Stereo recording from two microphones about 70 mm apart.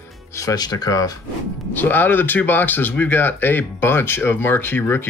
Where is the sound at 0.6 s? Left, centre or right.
Left.